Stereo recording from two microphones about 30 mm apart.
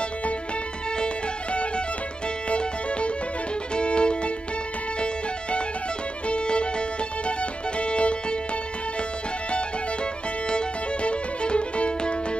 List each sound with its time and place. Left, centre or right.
0.9 s music: left
10.5 s music: left